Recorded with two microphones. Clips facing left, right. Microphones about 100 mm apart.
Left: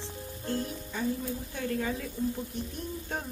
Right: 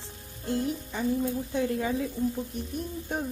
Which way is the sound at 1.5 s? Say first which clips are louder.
Right 3 dB; 20° right (ahead or behind).